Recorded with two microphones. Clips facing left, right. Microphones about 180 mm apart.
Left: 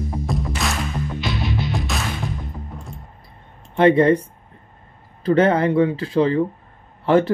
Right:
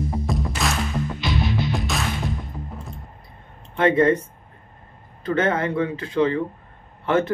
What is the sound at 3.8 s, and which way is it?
Speech, 30° left (ahead or behind).